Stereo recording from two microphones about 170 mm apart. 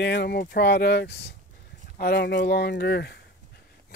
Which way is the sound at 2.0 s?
70° left (ahead or behind).